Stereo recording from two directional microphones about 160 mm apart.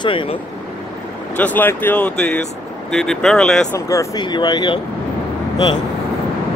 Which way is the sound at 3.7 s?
20° left (ahead or behind).